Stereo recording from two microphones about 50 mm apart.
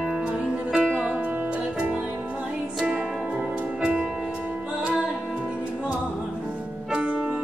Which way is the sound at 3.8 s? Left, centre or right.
Centre.